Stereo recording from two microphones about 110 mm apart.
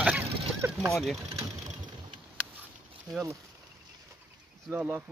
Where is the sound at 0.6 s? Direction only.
20° right (ahead or behind).